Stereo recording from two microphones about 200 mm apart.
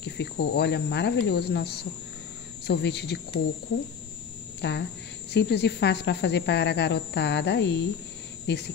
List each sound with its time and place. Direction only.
0.0 s speech: 55° left (ahead or behind)
4.6 s speech: 60° left (ahead or behind)